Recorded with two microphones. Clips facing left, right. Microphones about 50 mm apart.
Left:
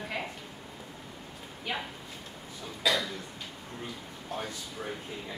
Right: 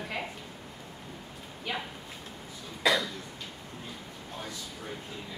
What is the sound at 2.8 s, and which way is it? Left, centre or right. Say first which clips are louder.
Cough: right 2 dB; right.